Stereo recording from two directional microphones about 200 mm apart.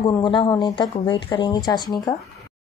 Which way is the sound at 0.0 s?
20° left (ahead or behind).